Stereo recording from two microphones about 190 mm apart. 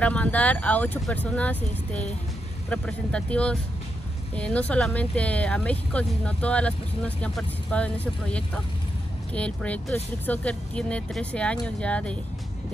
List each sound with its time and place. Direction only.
0.0 s speech: 5° left (ahead or behind)